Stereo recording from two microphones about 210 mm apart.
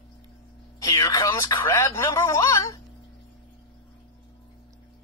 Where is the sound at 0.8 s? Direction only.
15° left (ahead or behind).